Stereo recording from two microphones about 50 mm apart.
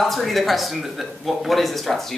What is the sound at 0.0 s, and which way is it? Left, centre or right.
Speech, centre.